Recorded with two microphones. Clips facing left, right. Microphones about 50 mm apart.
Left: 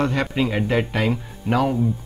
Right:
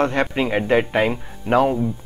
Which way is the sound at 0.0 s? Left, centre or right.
Centre.